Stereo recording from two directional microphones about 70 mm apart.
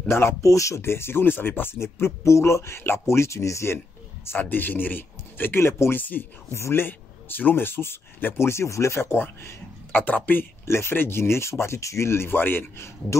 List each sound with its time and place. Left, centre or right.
0.4 s speech: left
4.3 s speech: left
6.5 s speech: left
9.9 s speech: left
10.6 s speech: left